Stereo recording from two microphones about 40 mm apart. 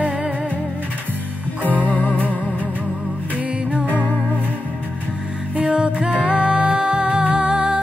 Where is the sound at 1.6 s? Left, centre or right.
Left.